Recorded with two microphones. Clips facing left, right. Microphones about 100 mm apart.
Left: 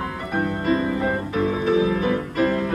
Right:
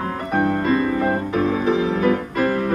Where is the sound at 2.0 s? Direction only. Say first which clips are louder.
Right 2 dB; 40° right (ahead or behind).